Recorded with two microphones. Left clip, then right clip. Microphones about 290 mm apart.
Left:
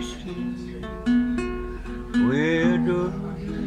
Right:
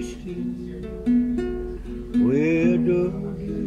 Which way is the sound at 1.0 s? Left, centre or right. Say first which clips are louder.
Right 1 dB; centre.